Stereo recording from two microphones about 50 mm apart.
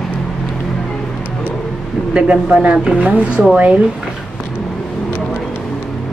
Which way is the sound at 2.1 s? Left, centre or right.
Right.